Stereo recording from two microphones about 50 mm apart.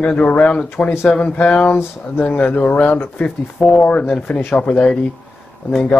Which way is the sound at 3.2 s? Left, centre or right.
Left.